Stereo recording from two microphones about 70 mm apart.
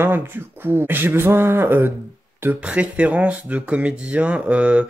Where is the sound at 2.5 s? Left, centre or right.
Centre.